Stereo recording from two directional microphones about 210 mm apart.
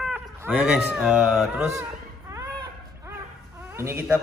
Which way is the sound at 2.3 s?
15° right (ahead or behind).